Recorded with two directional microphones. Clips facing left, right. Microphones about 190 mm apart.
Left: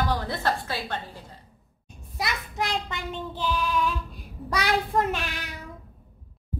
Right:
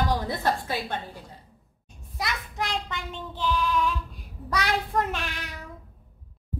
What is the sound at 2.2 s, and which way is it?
Child singing, 10° left (ahead or behind).